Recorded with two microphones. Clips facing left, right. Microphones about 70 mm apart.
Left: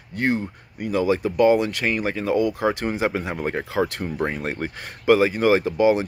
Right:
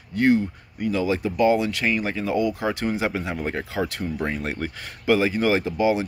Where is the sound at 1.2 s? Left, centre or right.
Left.